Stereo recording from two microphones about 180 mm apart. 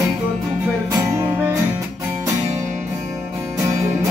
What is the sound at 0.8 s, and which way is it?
Music, 15° right (ahead or behind).